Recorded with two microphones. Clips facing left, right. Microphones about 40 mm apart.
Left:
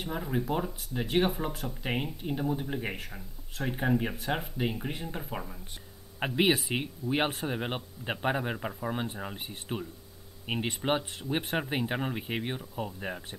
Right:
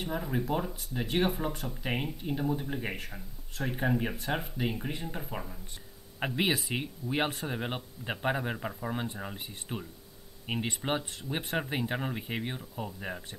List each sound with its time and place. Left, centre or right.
0.0 s speech: centre